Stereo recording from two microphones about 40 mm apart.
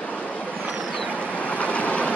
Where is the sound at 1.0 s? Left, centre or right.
Left.